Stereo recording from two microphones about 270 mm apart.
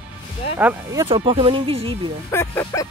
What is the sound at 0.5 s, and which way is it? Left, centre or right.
Speech, centre.